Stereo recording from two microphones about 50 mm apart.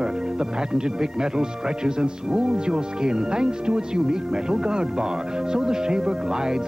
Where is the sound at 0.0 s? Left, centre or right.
Centre.